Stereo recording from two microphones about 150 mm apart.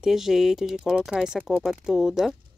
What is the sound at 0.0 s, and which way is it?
Speech, centre (ahead or behind).